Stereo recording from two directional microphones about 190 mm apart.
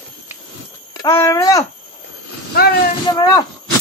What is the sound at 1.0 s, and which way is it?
Speech, 15° left (ahead or behind).